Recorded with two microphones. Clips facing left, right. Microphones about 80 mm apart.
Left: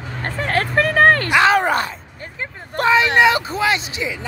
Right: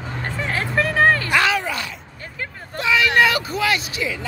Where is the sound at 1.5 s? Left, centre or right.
Left.